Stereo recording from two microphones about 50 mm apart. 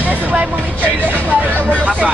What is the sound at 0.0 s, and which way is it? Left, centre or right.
Vehicle, right.